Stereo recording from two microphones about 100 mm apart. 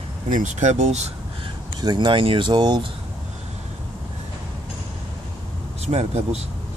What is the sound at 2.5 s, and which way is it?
Speech, 50° right (ahead or behind).